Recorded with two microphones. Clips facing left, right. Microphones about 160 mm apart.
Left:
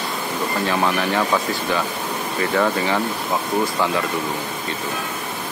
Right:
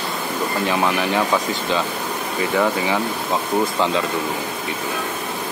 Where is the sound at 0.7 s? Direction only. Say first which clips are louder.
Even; 15° right (ahead or behind).